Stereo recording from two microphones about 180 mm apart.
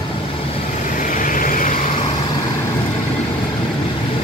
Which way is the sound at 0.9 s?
45° left (ahead or behind).